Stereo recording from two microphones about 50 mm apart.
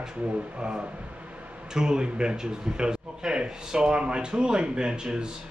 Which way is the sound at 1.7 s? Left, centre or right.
Centre.